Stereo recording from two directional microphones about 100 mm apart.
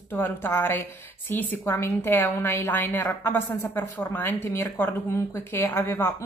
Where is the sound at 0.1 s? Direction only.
20° left (ahead or behind).